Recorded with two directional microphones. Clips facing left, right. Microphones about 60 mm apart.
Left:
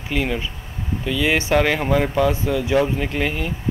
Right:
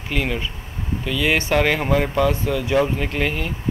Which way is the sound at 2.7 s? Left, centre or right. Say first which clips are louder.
Even; centre.